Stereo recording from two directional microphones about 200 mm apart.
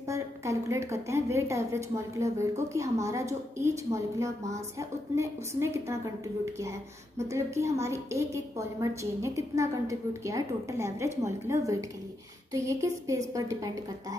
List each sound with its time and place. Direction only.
0.1 s a woman's voice: 15° right (ahead or behind)
7.2 s a woman's voice: 15° right (ahead or behind)